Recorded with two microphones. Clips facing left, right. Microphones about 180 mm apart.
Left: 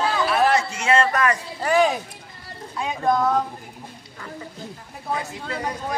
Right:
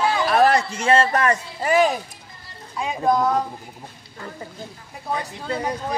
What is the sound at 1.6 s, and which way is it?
Speech, 5° right (ahead or behind).